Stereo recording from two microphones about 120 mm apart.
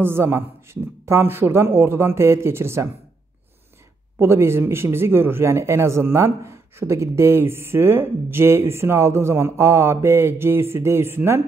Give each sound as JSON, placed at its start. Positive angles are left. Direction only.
{"t": 0.0, "sound": "speech", "side_deg": -20}
{"t": 4.2, "sound": "speech", "side_deg": -20}